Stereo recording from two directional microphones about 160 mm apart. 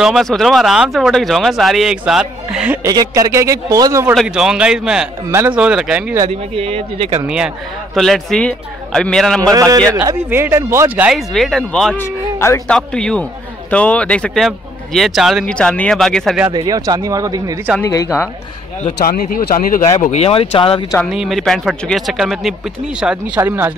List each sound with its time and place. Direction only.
0.0 s a man's voice: centre (ahead or behind)
2.9 s a man's voice: 20° right (ahead or behind)
4.1 s a man's voice: centre (ahead or behind)
6.5 s speech: 40° right (ahead or behind)
7.2 s a man's voice: 5° right (ahead or behind)
9.5 s a man's voice: 20° right (ahead or behind)
11.1 s a man's voice: centre (ahead or behind)
12.4 s a man's voice: 15° left (ahead or behind)
12.6 s a man's voice: 5° left (ahead or behind)
16.5 s a man's voice: 25° right (ahead or behind)
17.8 s a woman's voice: 20° left (ahead or behind)
18.9 s speech: 65° left (ahead or behind)
20.0 s speech: 40° left (ahead or behind)
21.0 s a man's voice: centre (ahead or behind)